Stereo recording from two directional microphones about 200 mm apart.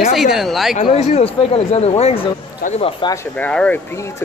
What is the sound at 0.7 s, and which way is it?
Speech, 35° left (ahead or behind).